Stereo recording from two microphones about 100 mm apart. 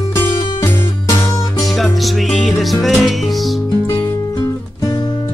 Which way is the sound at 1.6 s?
Centre (ahead or behind).